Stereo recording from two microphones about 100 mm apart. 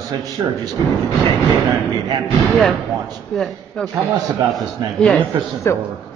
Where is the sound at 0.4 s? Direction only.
40° right (ahead or behind).